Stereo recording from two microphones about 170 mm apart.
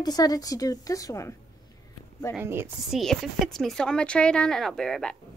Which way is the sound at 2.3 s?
15° right (ahead or behind).